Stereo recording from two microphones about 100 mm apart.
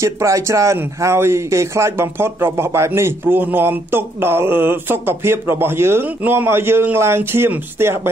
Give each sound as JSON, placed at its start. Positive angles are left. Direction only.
{"t": 0.0, "sound": "speech", "side_deg": -30}